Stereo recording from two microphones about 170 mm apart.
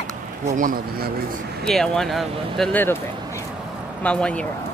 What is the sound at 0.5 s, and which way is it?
Speech, 50° right (ahead or behind).